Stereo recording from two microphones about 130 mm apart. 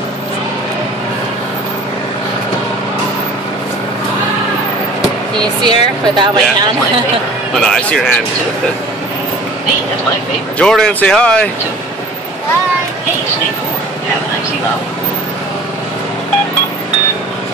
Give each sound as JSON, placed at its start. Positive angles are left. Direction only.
{"t": 5.4, "sound": "speech", "side_deg": -35}
{"t": 7.6, "sound": "speech", "side_deg": 5}
{"t": 10.6, "sound": "speech", "side_deg": 5}